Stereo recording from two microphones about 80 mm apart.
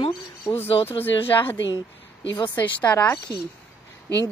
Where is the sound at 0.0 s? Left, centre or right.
Left.